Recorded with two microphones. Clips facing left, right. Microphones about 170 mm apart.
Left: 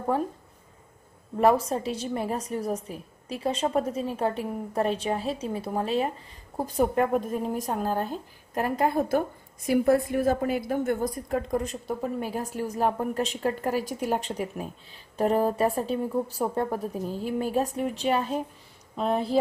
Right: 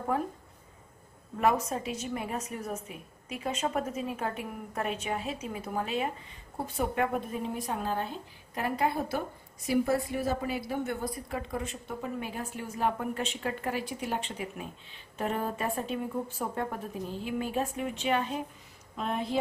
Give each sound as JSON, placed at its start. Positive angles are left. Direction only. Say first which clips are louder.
{"t": 1.4, "sound": "a woman's voice", "louder": "left 6 dB", "side_deg": 35}